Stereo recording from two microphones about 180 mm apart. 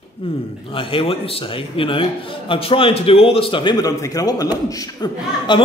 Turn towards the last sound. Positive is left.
turn(degrees=20)  # may be behind; listen again after turning